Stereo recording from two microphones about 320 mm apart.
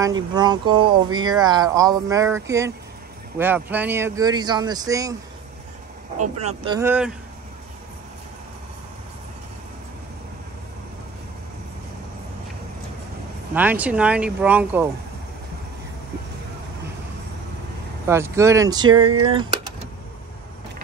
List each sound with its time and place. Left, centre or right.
0.0 s speech: centre
6.1 s speech: right; by 7.2 s centre
13.6 s speech: centre
18.0 s speech: centre
19.0 s speech: right
19.3 s a sound: centre